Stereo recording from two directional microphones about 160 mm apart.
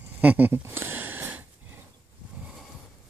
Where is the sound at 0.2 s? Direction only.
10° right (ahead or behind).